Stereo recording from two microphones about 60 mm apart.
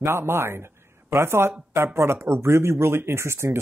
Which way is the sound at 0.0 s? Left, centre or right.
Right.